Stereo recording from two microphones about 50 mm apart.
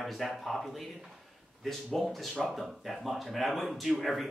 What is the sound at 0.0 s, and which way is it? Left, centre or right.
Speech, centre.